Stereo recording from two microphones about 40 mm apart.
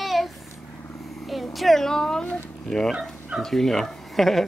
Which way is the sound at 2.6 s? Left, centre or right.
Centre.